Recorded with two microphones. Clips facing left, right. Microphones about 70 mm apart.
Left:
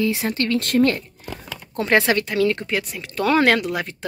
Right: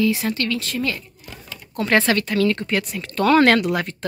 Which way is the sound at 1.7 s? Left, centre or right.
Left.